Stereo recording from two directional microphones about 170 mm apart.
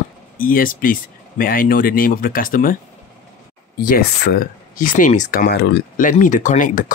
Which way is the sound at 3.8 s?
65° left (ahead or behind).